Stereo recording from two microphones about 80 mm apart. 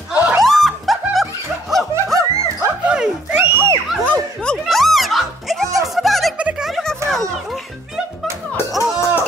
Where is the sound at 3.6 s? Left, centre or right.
Right.